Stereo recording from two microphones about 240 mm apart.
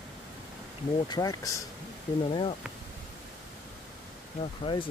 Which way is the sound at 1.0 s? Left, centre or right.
Centre.